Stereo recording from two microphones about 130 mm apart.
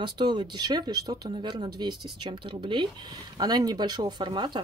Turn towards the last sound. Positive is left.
turn(degrees=-35)  # may be behind; listen again after turning